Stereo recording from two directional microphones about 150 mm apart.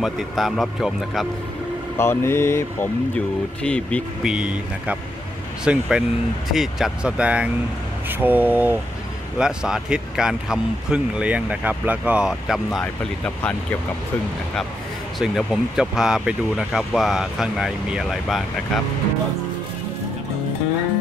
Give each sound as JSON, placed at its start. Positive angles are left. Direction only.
{"t": 0.0, "sound": "speech", "side_deg": 0}
{"t": 2.0, "sound": "speech", "side_deg": 15}
{"t": 4.2, "sound": "speech", "side_deg": -5}
{"t": 15.1, "sound": "speech", "side_deg": 0}